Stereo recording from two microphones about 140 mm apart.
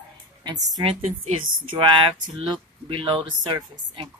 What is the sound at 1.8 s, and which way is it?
Speech, 35° right (ahead or behind).